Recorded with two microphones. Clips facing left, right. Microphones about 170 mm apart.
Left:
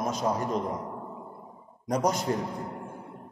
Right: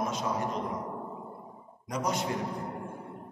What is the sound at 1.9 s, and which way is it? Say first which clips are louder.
Speech: left 5 dB; 40° left (ahead or behind).